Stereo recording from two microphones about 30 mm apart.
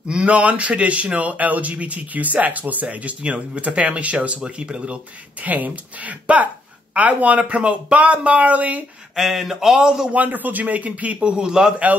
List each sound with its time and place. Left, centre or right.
0.1 s speech: right
4.5 s speech: right
5.4 s a woman's voice: right
9.1 s speech: centre
9.8 s a man's voice: right
10.1 s a woman's voice: right
11.1 s speech: right
11.4 s a man's voice: right